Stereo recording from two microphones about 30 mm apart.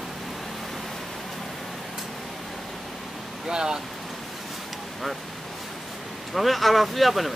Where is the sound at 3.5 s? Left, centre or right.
Right.